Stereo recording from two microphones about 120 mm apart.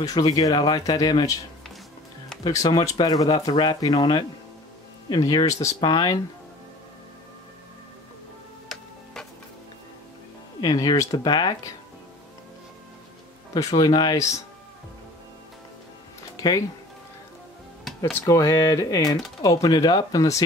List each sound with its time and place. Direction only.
0.0 s speech: 30° left (ahead or behind)
2.4 s speech: 30° left (ahead or behind)
10.6 s speech: 35° left (ahead or behind)
13.6 s speech: 30° left (ahead or behind)
16.3 s music: 30° left (ahead or behind)
18.2 s speech: 25° left (ahead or behind)